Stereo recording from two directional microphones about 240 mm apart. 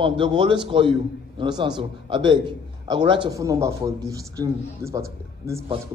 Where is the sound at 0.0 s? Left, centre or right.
Right.